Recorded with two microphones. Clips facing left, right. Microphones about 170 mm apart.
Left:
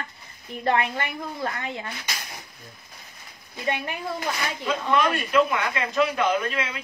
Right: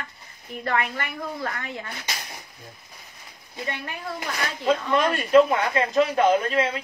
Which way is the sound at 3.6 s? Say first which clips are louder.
Left 6 dB; 20° left (ahead or behind).